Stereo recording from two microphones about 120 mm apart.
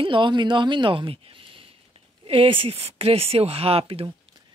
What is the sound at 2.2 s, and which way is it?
Speech, 50° right (ahead or behind).